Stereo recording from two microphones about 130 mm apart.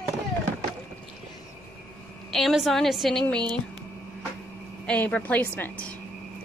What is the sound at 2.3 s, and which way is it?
Speech, centre (ahead or behind).